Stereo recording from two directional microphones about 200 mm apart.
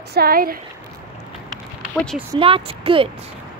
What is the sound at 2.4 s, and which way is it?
Speech, 25° right (ahead or behind).